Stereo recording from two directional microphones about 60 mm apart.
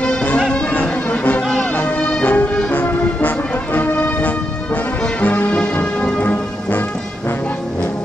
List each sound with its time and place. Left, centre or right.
0.0 s music: centre